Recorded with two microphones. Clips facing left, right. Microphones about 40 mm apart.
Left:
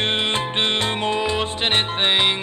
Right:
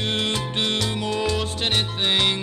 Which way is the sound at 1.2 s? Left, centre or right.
Left.